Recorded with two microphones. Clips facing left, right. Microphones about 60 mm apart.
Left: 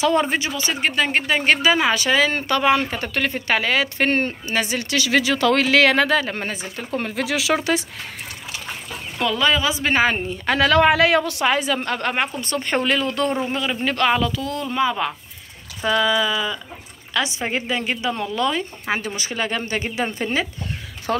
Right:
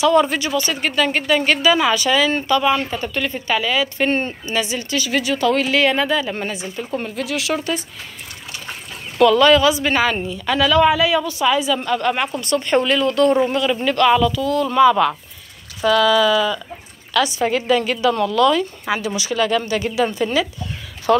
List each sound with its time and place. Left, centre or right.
0.0 s speech: left
2.4 s speech: left
4.8 s speech: left
6.3 s a woman's voice: left
7.0 s speech: left
9.2 s a woman's voice: centre
13.5 s speech: centre
14.6 s a woman's voice: centre; by 20.4 s left
21.1 s speech: right